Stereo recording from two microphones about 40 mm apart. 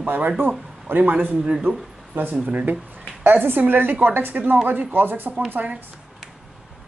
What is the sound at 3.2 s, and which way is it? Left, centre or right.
A woman's voice, right.